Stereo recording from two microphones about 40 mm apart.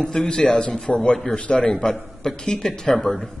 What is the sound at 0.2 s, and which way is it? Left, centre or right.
A man's voice, left.